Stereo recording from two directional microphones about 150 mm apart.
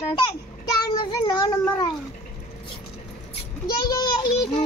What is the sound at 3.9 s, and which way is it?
Speech, 25° left (ahead or behind).